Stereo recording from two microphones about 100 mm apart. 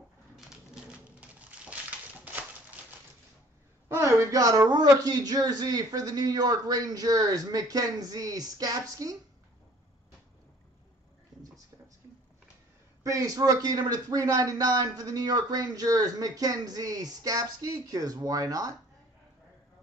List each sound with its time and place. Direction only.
0.4 s a sound: 5° right (ahead or behind)
3.9 s a man's voice: 30° right (ahead or behind)
13.0 s a man's voice: 35° right (ahead or behind)